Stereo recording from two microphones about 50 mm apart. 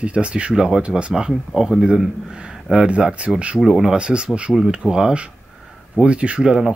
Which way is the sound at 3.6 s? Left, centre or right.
Centre.